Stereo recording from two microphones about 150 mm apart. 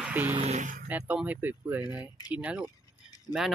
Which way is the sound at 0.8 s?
10° right (ahead or behind).